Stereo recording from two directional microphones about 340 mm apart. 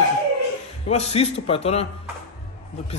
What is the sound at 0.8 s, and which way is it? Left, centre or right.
A man's voice, centre.